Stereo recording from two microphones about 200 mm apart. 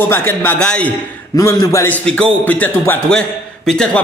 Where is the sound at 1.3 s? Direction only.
15° left (ahead or behind).